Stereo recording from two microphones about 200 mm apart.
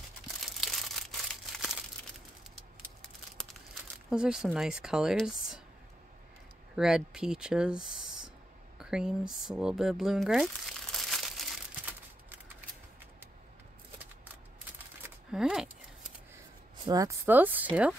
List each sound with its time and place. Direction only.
0.4 s crumpling: centre (ahead or behind)
3.0 s crumpling: 5° left (ahead or behind)
4.1 s a woman's voice: 5° right (ahead or behind)
6.8 s speech: centre (ahead or behind)
8.7 s a sound: 5° right (ahead or behind)
15.0 s a sound: 5° right (ahead or behind)
16.8 s speech: 20° right (ahead or behind)